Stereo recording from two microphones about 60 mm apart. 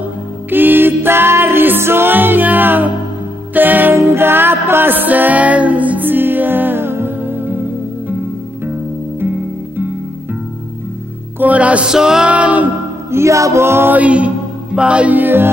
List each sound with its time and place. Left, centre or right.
0.5 s music: right
11.3 s music: right
11.9 s music: centre
12.3 s music: right
13.1 s a sound: right
13.9 s music: right
15.1 s music: right